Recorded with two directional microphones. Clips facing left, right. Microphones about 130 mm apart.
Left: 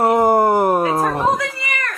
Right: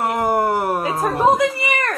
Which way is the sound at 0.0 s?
25° left (ahead or behind).